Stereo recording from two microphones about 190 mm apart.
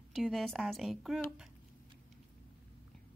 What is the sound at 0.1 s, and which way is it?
A woman's voice, centre (ahead or behind).